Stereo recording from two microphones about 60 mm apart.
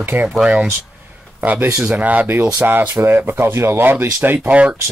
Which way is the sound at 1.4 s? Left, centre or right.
Right.